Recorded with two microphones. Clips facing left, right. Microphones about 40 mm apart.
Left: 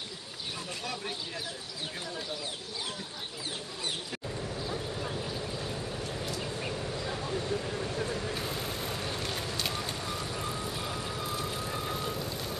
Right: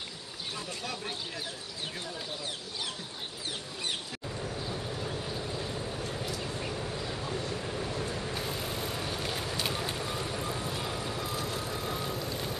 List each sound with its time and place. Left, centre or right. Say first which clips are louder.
4.6 s vehicle: left 1 dB; centre
6.7 s a sound: even; centre
7.1 s vehicle: left 2 dB; centre
11.9 s vehicle: even; centre